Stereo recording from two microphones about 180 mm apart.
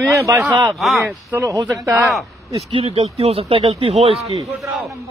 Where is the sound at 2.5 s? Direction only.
35° right (ahead or behind).